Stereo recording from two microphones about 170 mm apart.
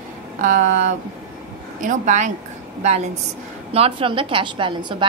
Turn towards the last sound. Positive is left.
turn(degrees=-30)  # may be behind; listen again after turning